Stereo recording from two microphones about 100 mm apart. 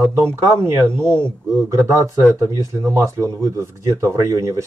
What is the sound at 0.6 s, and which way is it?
Speech, 25° right (ahead or behind).